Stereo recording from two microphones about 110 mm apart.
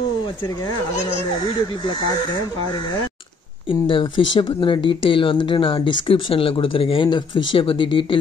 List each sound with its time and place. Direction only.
3.8 s speech: 45° left (ahead or behind)